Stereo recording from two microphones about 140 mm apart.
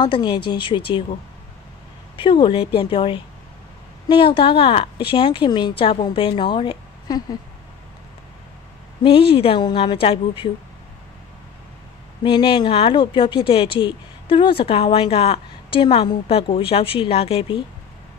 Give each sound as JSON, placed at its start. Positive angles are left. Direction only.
{"t": 0.0, "sound": "speech", "side_deg": 35}
{"t": 2.1, "sound": "speech", "side_deg": 35}
{"t": 9.0, "sound": "speech", "side_deg": 40}
{"t": 12.2, "sound": "speech", "side_deg": 35}